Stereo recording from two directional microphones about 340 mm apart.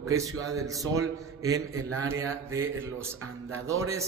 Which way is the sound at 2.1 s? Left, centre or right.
Centre.